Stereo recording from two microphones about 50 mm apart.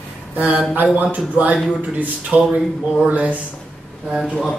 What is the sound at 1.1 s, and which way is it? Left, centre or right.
A man's voice, right.